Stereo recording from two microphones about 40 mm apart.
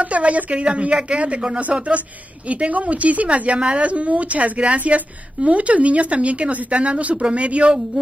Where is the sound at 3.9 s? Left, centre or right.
Right.